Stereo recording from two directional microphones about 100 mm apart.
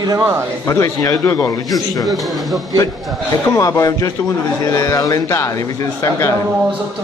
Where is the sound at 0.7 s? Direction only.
30° left (ahead or behind).